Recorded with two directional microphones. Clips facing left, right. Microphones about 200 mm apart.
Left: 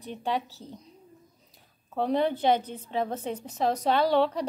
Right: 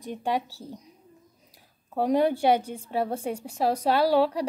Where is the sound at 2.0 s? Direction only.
10° right (ahead or behind).